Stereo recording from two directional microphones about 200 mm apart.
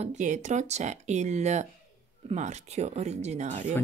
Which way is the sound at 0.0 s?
35° right (ahead or behind).